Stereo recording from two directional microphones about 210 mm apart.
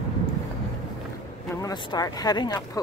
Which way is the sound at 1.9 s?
20° left (ahead or behind).